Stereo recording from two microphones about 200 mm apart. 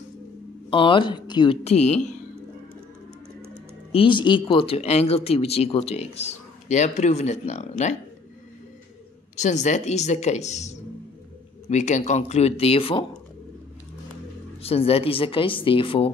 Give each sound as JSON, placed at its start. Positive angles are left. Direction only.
{"t": 0.7, "sound": "speech", "side_deg": 25}
{"t": 3.9, "sound": "speech", "side_deg": 25}
{"t": 9.4, "sound": "speech", "side_deg": 35}
{"t": 14.6, "sound": "speech", "side_deg": 30}